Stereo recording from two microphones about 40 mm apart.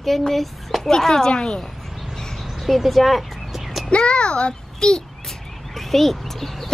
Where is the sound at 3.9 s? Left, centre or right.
Left.